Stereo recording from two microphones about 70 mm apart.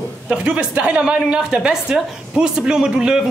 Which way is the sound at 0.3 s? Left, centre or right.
Centre.